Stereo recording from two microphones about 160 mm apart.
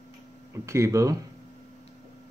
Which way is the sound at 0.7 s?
20° right (ahead or behind).